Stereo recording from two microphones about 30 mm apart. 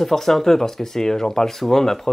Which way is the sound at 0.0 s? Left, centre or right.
Centre.